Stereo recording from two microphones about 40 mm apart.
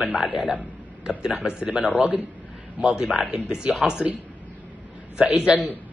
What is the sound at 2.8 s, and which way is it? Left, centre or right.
Speech, right.